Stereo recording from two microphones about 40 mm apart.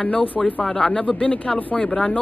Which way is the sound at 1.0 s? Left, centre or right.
Left.